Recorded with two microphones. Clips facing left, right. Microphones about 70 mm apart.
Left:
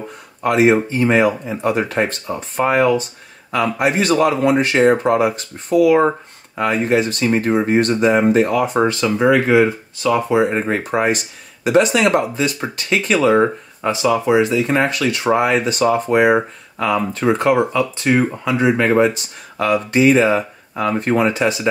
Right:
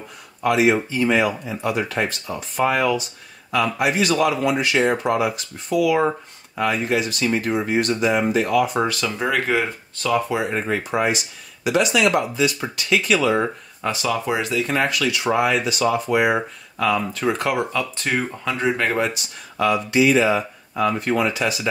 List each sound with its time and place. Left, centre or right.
0.4 s speech: left
9.0 s speech: centre
10.3 s speech: left
10.8 s speech: left
14.0 s speech: centre
14.7 s speech: left
16.7 s speech: left; by 18.9 s centre
19.6 s speech: left